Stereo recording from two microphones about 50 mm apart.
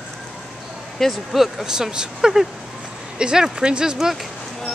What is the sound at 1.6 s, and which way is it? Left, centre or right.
Speech, centre.